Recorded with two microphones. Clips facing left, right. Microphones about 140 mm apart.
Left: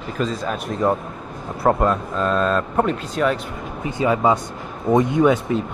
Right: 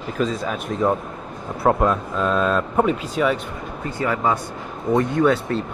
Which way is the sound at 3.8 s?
20° left (ahead or behind).